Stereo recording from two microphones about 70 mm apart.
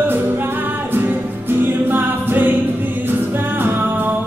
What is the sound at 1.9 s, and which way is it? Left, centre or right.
Music, right.